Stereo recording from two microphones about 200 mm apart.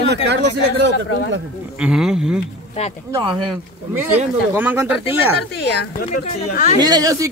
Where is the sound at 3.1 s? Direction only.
20° right (ahead or behind).